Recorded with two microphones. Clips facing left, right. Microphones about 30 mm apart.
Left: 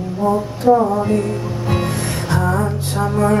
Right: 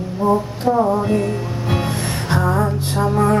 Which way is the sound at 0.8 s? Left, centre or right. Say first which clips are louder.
Even; centre.